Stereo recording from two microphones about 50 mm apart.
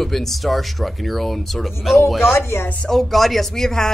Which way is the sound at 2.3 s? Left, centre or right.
Left.